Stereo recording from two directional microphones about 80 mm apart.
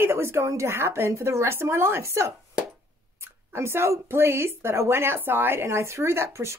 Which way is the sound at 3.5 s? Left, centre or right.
Right.